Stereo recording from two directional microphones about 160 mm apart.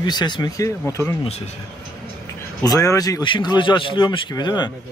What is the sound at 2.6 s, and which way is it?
Speech, 20° left (ahead or behind).